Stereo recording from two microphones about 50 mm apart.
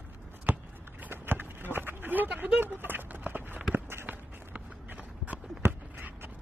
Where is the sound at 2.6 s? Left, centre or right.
Right.